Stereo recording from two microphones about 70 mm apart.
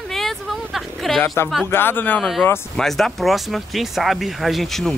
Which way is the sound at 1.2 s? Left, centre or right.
Left.